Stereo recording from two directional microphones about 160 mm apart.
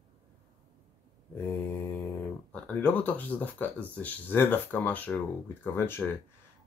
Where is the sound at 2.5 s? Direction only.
10° left (ahead or behind).